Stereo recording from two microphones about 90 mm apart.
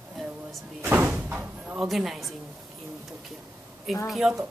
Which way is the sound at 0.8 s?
20° right (ahead or behind).